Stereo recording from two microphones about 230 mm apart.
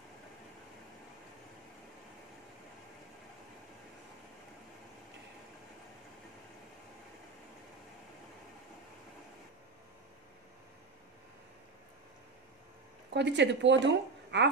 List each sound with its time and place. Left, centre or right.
13.1 s a woman's voice: right